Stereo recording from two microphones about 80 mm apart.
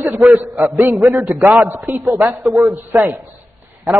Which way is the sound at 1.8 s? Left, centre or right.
Centre.